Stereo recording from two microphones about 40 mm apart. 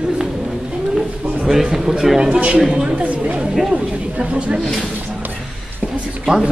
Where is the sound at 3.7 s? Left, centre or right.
Right.